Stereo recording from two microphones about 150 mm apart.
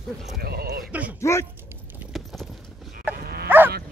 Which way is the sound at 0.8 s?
10° right (ahead or behind).